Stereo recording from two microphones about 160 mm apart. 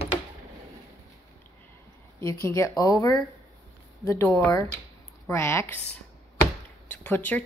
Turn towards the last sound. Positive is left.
turn(degrees=10)  # may be behind; listen again after turning